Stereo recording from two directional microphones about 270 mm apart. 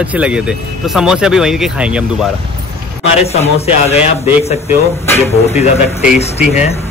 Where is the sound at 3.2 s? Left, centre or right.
Left.